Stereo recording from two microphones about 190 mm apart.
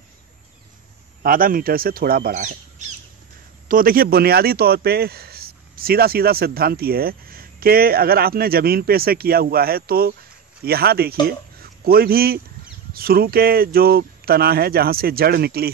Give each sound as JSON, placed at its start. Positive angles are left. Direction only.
{"t": 1.2, "sound": "a man's voice", "side_deg": -50}
{"t": 3.6, "sound": "a man's voice", "side_deg": -50}